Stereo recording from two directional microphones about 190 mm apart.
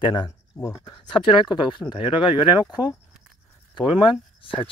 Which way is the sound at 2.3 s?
5° right (ahead or behind).